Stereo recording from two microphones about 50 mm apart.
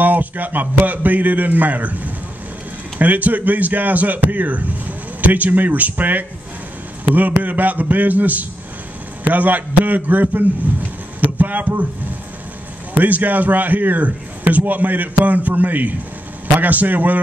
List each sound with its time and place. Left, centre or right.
0.0 s a man's voice: right
13.0 s speech: right